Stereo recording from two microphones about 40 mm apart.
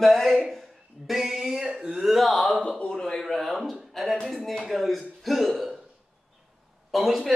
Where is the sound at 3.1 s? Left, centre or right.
Centre.